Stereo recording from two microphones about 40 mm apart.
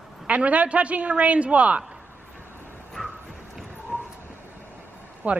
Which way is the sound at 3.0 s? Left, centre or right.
Centre.